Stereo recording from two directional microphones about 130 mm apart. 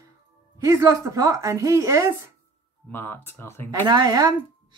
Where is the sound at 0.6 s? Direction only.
25° right (ahead or behind).